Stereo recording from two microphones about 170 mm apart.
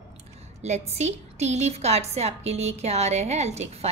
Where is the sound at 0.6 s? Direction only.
40° right (ahead or behind).